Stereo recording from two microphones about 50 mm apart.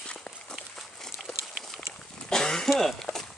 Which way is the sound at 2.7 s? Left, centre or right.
Centre.